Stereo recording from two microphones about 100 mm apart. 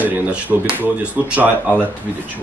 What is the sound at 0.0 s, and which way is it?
Speech, 15° right (ahead or behind).